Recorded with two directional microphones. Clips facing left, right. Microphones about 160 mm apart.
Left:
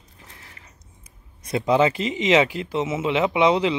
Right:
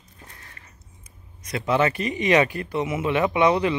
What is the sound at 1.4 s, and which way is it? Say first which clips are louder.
Speech: left 3 dB; 20° left (ahead or behind).